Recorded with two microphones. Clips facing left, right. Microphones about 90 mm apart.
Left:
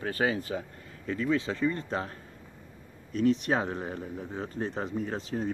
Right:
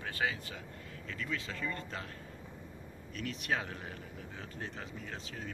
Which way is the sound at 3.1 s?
35° left (ahead or behind).